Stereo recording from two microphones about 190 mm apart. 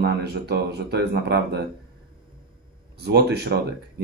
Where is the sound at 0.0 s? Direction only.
60° right (ahead or behind).